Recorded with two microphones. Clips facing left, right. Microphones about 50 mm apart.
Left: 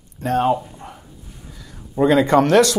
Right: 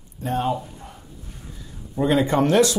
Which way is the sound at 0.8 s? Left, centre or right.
Left.